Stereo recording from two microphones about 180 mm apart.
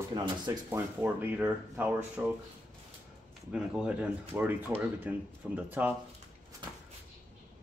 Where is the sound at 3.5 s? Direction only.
5° right (ahead or behind).